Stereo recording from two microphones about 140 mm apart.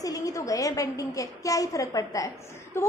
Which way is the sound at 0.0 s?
25° left (ahead or behind).